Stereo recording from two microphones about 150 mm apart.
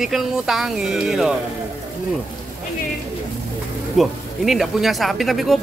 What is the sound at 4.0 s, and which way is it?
Speech, centre (ahead or behind).